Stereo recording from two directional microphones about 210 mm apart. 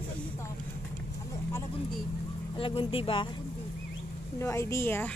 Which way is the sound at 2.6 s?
25° left (ahead or behind).